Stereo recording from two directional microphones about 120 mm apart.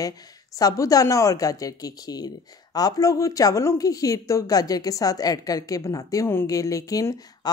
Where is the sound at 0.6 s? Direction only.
30° left (ahead or behind).